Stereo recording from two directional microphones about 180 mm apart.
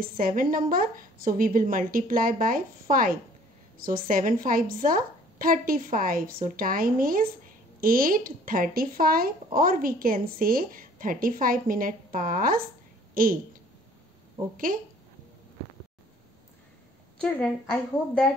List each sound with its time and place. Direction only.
0.0 s a woman's voice: 50° right (ahead or behind)
14.7 s speech: 50° right (ahead or behind)
17.2 s a woman's voice: 5° left (ahead or behind)